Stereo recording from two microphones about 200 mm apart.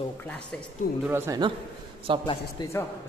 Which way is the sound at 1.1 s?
10° right (ahead or behind).